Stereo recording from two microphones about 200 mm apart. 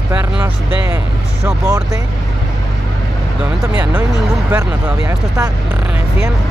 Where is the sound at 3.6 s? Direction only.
10° right (ahead or behind).